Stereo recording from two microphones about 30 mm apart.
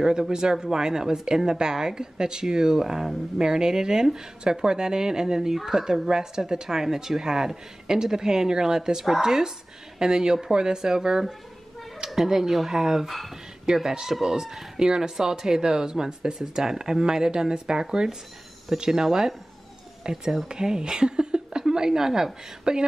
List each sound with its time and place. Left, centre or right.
0.0 s speech: right
20.1 s speech: right